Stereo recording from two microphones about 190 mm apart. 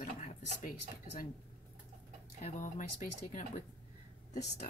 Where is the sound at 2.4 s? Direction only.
45° left (ahead or behind).